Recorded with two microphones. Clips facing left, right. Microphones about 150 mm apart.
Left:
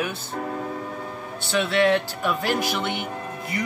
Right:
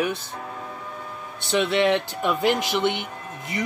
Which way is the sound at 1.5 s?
20° right (ahead or behind).